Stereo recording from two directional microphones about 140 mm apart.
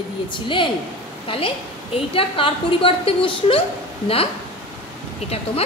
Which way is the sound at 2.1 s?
40° left (ahead or behind).